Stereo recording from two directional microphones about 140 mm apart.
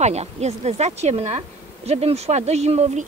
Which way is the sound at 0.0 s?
50° right (ahead or behind).